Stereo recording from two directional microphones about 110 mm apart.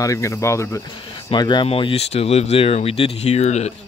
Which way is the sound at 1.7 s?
60° left (ahead or behind).